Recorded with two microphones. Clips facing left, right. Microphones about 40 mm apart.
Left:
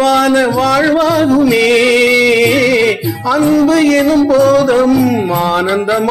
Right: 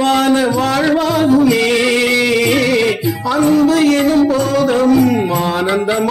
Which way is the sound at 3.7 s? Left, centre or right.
Left.